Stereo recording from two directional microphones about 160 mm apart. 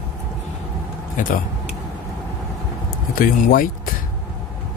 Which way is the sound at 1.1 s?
60° left (ahead or behind).